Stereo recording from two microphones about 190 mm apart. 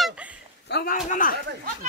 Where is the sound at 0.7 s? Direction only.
50° left (ahead or behind).